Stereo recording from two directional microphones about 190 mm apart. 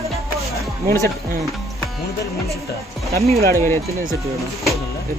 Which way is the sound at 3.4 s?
50° right (ahead or behind).